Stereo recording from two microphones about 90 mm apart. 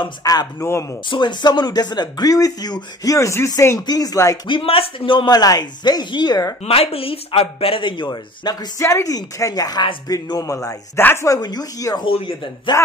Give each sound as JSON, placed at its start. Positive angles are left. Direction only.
{"t": 0.0, "sound": "speech", "side_deg": 45}
{"t": 1.0, "sound": "speech", "side_deg": 60}
{"t": 4.5, "sound": "a man's voice", "side_deg": 80}
{"t": 5.3, "sound": "speech", "side_deg": 45}
{"t": 6.7, "sound": "speech", "side_deg": 90}
{"t": 8.7, "sound": "a woman's voice", "side_deg": 35}
{"t": 11.0, "sound": "speech", "side_deg": 25}
{"t": 11.2, "sound": "speech", "side_deg": 45}
{"t": 12.1, "sound": "a man's voice", "side_deg": 70}